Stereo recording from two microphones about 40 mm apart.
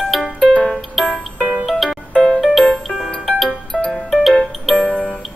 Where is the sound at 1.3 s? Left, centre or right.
Right.